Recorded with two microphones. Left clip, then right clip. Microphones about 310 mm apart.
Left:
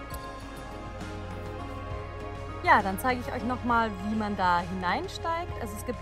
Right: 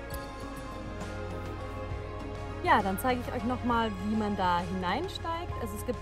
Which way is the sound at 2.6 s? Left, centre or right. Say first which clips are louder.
Left 3 dB; centre.